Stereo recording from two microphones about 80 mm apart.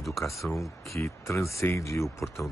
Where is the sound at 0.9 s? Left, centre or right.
Left.